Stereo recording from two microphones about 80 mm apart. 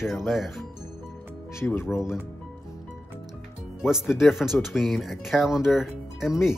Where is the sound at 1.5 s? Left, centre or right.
Left.